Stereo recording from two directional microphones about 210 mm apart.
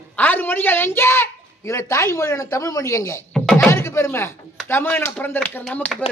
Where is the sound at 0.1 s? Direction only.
10° left (ahead or behind).